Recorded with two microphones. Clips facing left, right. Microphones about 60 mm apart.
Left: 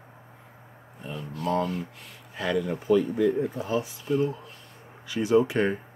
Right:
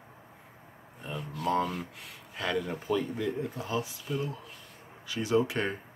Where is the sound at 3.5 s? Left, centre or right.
Left.